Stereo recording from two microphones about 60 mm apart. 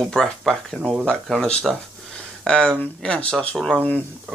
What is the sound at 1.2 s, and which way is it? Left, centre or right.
Speech, centre.